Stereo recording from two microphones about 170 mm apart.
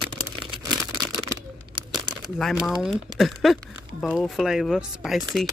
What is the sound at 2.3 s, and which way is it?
Speech, centre (ahead or behind).